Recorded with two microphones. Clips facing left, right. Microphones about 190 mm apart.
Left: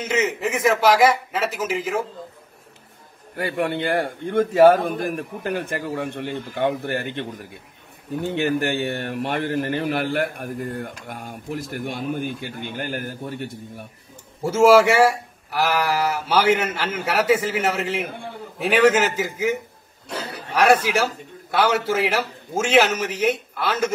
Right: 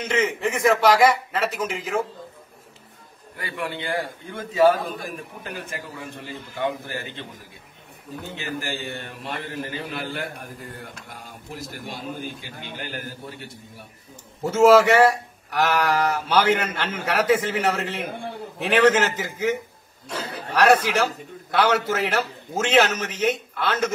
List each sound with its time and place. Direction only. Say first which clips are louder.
0.0 s a man's voice: left 1 dB; 5° left (ahead or behind)
3.3 s a man's voice: left 7 dB; 60° left (ahead or behind)
14.4 s speech: left 1 dB; 10° left (ahead or behind)